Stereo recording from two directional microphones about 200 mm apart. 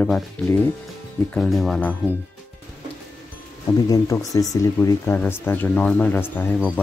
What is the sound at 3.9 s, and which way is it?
Speech, 15° left (ahead or behind).